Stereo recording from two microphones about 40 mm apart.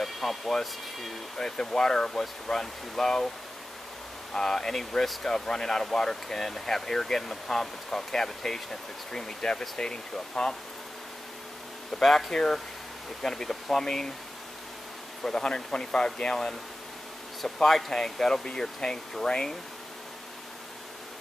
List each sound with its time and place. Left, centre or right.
0.0 s speech: centre
4.3 s speech: centre
12.0 s speech: centre
15.2 s speech: centre
17.6 s speech: centre